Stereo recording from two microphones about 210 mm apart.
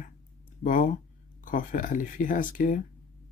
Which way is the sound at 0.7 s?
40° left (ahead or behind).